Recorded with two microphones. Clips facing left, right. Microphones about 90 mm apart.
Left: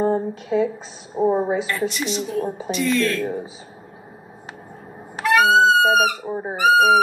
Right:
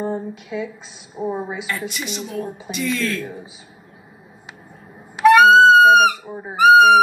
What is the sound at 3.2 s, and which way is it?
Speech, 50° left (ahead or behind).